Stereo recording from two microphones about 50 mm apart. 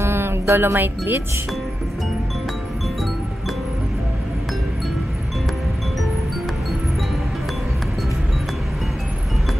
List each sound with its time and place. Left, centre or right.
0.0 s music: right